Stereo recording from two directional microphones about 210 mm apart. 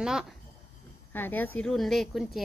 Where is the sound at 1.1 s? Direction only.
10° left (ahead or behind).